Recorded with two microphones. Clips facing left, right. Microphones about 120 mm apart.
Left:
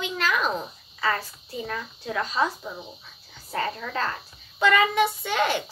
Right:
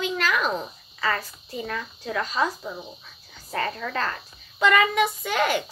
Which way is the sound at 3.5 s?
30° left (ahead or behind).